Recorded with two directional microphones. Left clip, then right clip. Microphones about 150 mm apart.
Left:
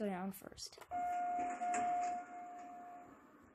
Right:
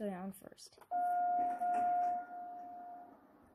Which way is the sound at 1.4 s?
40° left (ahead or behind).